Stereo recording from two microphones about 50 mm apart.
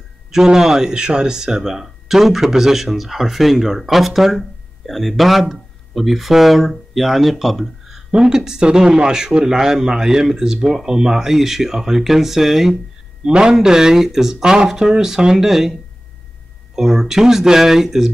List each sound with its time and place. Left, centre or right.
0.3 s speech: centre
8.1 s speech: centre
16.7 s speech: centre